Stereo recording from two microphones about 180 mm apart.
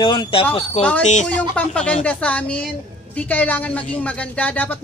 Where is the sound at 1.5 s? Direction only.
5° left (ahead or behind).